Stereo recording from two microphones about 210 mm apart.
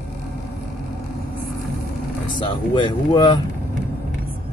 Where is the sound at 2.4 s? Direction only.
25° left (ahead or behind).